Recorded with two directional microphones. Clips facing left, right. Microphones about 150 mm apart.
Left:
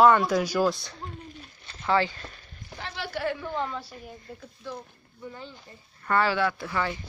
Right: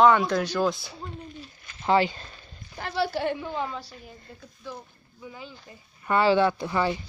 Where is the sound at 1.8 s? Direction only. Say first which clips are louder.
Right 3 dB; 20° right (ahead or behind).